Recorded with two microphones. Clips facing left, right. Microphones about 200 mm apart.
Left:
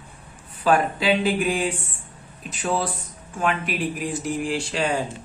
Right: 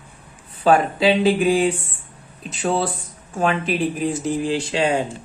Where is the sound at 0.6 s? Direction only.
25° right (ahead or behind).